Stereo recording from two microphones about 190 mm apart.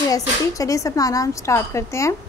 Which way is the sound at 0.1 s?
15° left (ahead or behind).